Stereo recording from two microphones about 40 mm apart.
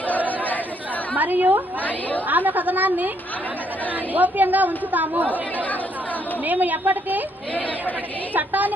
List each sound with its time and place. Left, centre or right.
1.1 s a woman's voice: right
4.1 s a woman's voice: right
6.4 s a woman's voice: right
8.3 s a woman's voice: right